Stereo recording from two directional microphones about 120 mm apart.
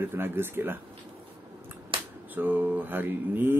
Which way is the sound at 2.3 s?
15° right (ahead or behind).